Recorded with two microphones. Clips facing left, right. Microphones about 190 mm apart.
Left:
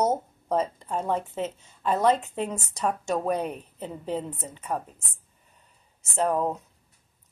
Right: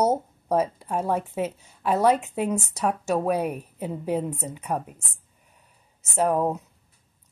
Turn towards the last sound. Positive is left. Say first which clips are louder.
# right 2 dB
turn(degrees=-10)  # may be behind; listen again after turning